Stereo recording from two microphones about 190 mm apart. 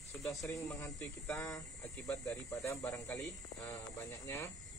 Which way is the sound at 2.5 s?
15° left (ahead or behind).